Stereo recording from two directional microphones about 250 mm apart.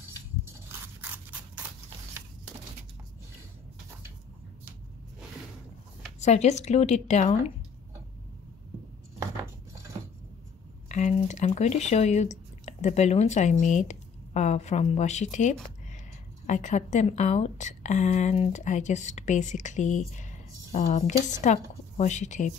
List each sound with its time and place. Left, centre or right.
0.7 s scissors: centre
6.2 s a woman's voice: left
10.9 s a woman's voice: left